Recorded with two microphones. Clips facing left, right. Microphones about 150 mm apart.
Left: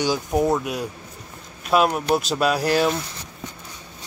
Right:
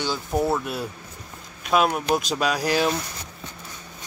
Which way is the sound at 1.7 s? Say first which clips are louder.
Left 2 dB; centre (ahead or behind).